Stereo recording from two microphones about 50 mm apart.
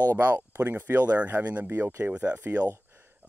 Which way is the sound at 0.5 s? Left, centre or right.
Right.